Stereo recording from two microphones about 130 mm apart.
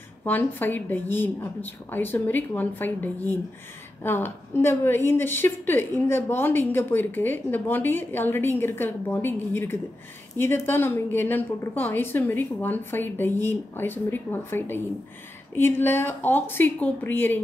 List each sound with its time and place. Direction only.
0.2 s a woman's voice: 15° left (ahead or behind)